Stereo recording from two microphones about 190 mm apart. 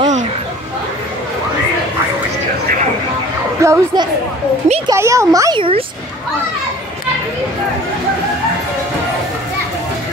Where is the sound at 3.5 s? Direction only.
15° right (ahead or behind).